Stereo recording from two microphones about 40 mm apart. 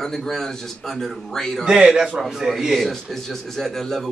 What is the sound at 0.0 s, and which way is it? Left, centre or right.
A man's voice, centre.